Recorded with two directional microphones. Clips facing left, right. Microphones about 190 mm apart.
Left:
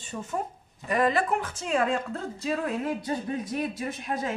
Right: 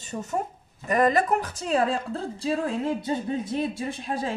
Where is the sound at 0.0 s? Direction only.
40° right (ahead or behind).